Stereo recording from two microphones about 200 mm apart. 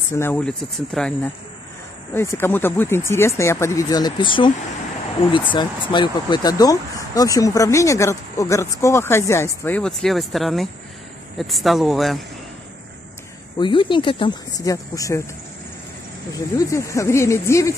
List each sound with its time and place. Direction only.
0.1 s speech: 10° left (ahead or behind)
13.6 s speech: 25° left (ahead or behind)
16.3 s speech: 15° left (ahead or behind)